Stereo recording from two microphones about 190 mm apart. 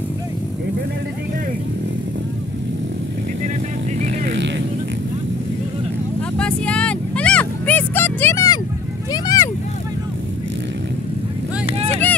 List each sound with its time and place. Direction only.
4.1 s vehicle: 65° right (ahead or behind)
6.3 s vehicle: 5° left (ahead or behind)
11.6 s vehicle: 35° right (ahead or behind)